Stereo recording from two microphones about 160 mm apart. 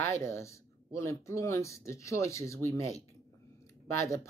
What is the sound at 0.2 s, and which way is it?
Speech, 20° left (ahead or behind).